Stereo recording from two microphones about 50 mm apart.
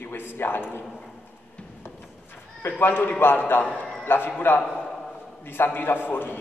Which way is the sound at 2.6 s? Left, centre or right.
Left.